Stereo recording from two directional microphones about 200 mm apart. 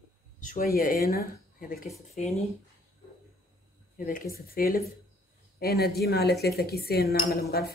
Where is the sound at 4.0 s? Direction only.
45° left (ahead or behind).